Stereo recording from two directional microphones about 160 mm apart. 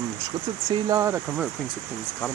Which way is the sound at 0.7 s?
20° right (ahead or behind).